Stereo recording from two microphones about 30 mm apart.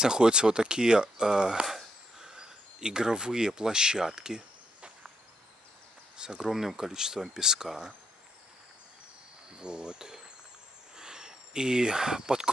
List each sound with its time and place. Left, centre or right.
0.0 s speech: right
6.1 s speech: right
6.5 s speech: centre
9.6 s speech: right
11.0 s a sound: right